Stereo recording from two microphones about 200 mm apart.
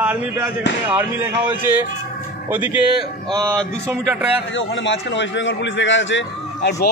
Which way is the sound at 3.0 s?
15° right (ahead or behind).